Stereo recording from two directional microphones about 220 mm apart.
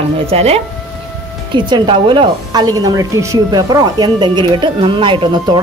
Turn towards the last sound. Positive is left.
turn(degrees=-20)  # may be behind; listen again after turning